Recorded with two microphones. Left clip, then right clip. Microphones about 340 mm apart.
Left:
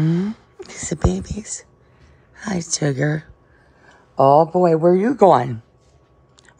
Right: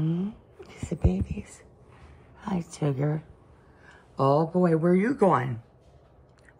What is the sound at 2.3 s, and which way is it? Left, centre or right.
Speech, left.